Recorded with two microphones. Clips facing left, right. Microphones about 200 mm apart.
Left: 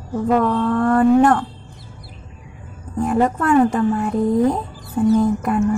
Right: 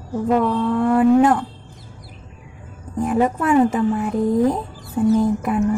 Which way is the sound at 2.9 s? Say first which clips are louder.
Left 1 dB; 5° right (ahead or behind).